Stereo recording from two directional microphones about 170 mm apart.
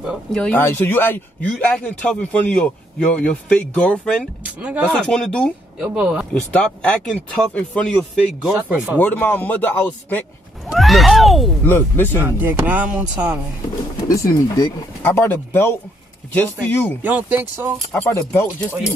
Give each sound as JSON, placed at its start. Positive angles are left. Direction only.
{"t": 0.0, "sound": "speech", "side_deg": 0}
{"t": 4.6, "sound": "speech", "side_deg": -10}
{"t": 5.0, "sound": "speech", "side_deg": 5}
{"t": 5.8, "sound": "speech", "side_deg": -5}
{"t": 6.5, "sound": "speech", "side_deg": 10}
{"t": 8.9, "sound": "speech", "side_deg": 10}
{"t": 10.7, "sound": "speech", "side_deg": 0}
{"t": 11.6, "sound": "speech", "side_deg": 10}
{"t": 12.2, "sound": "speech", "side_deg": -10}
{"t": 14.0, "sound": "speech", "side_deg": 20}
{"t": 17.0, "sound": "speech", "side_deg": -10}
{"t": 17.9, "sound": "speech", "side_deg": 10}